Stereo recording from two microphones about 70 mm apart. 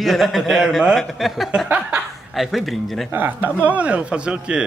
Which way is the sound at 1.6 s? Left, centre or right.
Right.